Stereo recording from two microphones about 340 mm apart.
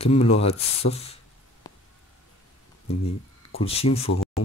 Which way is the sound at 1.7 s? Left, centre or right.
Centre.